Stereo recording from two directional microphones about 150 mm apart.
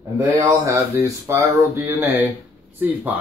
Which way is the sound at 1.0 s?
20° right (ahead or behind).